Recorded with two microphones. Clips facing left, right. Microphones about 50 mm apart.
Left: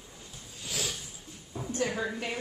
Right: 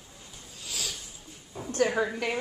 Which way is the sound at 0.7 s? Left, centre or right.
Left.